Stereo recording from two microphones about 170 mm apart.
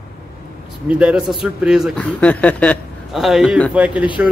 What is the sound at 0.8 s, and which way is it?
Speech, 5° right (ahead or behind).